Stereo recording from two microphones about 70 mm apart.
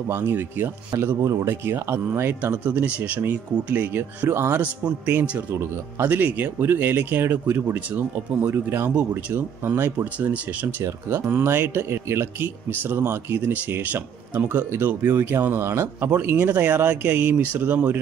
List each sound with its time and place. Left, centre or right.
0.1 s speech: right
1.2 s speech: right
1.5 s speech: right
2.4 s speech: right
10.1 s speech: right